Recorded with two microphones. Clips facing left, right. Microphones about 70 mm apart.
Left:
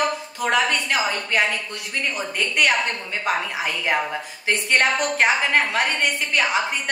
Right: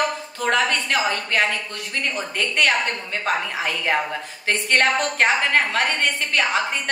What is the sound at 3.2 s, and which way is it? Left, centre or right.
A woman's voice, centre.